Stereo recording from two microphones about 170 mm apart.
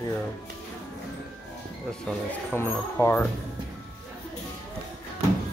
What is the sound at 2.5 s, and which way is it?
Speech, 15° left (ahead or behind).